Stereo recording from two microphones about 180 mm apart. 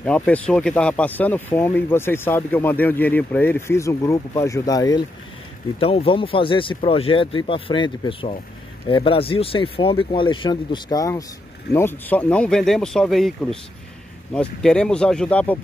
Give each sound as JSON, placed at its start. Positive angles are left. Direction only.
{"t": 0.0, "sound": "speech", "side_deg": 5}
{"t": 5.8, "sound": "speech", "side_deg": 30}